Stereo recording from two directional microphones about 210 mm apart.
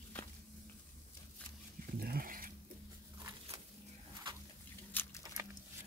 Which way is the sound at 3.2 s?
20° right (ahead or behind).